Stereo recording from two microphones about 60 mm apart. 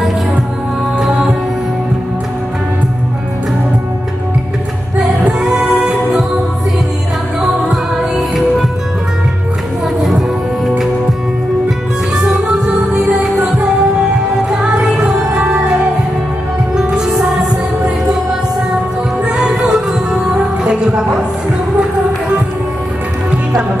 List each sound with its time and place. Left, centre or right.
5.0 s music: centre
9.9 s music: centre
12.2 s music: centre
14.5 s music: centre
15.3 s music: right
19.2 s music: centre